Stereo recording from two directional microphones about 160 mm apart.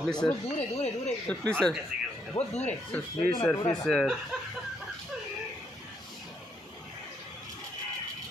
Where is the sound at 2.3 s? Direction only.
45° left (ahead or behind).